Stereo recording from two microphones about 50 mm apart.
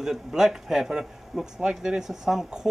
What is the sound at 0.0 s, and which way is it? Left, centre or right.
Speech, centre.